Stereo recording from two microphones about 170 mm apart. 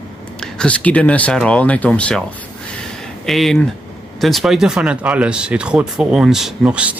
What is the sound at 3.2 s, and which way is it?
Speech, centre (ahead or behind).